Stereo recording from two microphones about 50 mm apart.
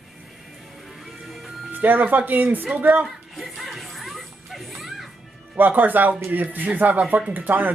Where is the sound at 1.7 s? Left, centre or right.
Right.